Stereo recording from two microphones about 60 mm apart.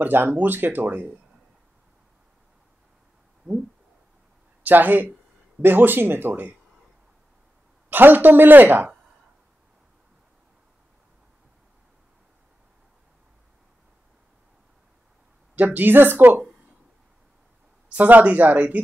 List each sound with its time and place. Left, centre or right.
0.0 s speech: right
4.6 s speech: right
7.9 s speech: right
15.5 s speech: right
17.9 s speech: right